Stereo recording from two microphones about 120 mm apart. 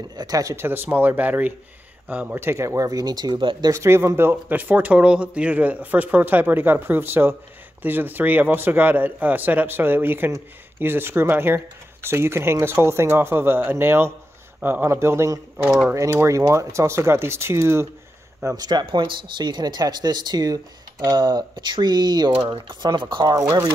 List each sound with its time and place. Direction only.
0.1 s a man's voice: 30° right (ahead or behind)
3.7 s a man's voice: 20° right (ahead or behind); by 23.3 s 40° right (ahead or behind)